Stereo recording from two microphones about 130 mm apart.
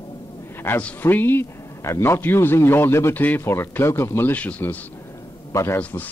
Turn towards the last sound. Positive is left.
turn(degrees=15)  # may be behind; listen again after turning